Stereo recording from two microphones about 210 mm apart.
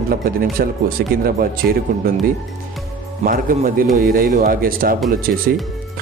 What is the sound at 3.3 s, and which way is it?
Speech, 40° right (ahead or behind).